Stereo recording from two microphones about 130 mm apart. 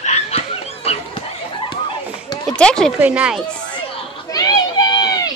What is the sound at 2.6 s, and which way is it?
Speech, 5° left (ahead or behind).